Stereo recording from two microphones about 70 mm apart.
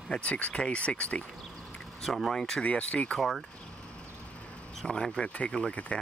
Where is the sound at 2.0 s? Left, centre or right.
Centre.